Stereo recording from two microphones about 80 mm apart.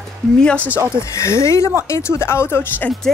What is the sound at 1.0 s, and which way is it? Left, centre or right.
Speech, left.